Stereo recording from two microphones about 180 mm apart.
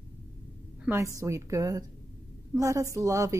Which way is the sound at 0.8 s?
10° right (ahead or behind).